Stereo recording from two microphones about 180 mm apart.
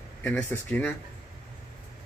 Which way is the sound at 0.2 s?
10° left (ahead or behind).